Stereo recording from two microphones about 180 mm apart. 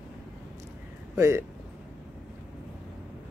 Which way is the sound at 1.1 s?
15° right (ahead or behind).